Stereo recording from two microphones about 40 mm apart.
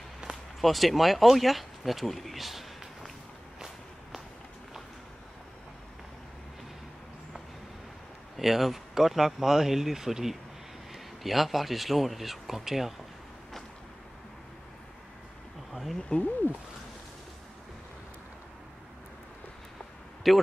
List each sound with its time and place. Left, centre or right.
0.2 s a sound: centre
0.6 s speech: centre
3.5 s walk: centre
8.4 s a man's voice: centre
15.7 s a sound: centre
20.2 s a man's voice: centre